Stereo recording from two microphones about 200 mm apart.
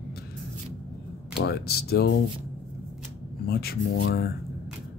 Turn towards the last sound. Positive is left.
turn(degrees=50)  # may be behind; listen again after turning